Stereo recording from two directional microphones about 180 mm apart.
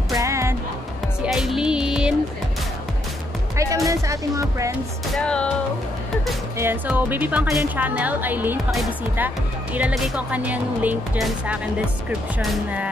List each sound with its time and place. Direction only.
0.1 s music: 15° right (ahead or behind)
1.2 s music: centre (ahead or behind)
3.5 s music: 15° right (ahead or behind)
5.1 s speech: 5° left (ahead or behind)
6.6 s a woman's voice: 10° right (ahead or behind)